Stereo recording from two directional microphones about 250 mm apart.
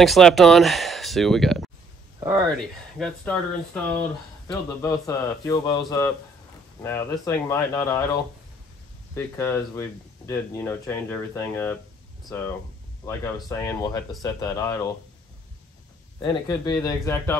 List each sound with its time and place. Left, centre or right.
0.0 s speech: centre
2.1 s a sound: centre
2.5 s speech: centre
9.1 s speech: centre
16.2 s speech: centre